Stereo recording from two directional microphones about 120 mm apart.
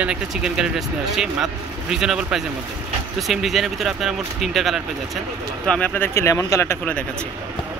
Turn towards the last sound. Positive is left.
turn(degrees=20)  # may be behind; listen again after turning